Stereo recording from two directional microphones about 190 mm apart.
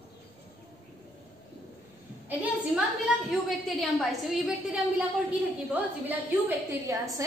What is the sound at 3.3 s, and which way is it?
A woman's voice, centre (ahead or behind).